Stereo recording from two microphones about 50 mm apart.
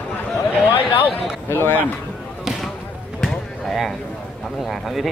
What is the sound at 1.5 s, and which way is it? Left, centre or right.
Speech, left.